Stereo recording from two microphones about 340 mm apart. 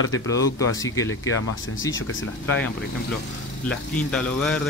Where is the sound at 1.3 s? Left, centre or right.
Left.